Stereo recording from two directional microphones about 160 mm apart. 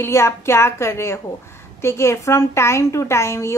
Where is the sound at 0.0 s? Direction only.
15° left (ahead or behind).